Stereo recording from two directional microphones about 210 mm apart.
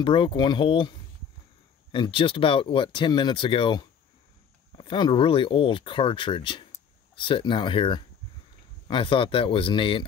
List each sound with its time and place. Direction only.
0.0 s speech: 25° left (ahead or behind)